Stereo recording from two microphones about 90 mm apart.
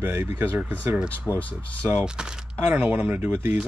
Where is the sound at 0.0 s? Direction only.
25° right (ahead or behind).